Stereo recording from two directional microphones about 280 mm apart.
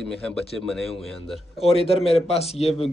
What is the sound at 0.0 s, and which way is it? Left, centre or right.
Speech, centre.